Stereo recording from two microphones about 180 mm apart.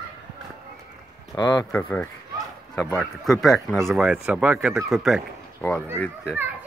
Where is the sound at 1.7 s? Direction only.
10° left (ahead or behind).